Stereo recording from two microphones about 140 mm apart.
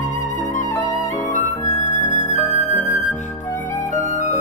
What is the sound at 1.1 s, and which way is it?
Music, 60° left (ahead or behind).